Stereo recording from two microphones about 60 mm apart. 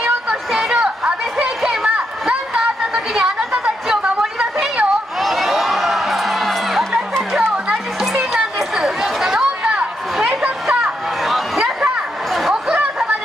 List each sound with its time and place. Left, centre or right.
0.3 s a sound: centre
3.6 s chatter: centre
5.2 s music: centre
7.3 s chatter: centre
7.7 s children playing: centre
8.3 s chatter: centre
9.6 s chatter: centre
10.4 s a sound: centre
11.2 s chatter: centre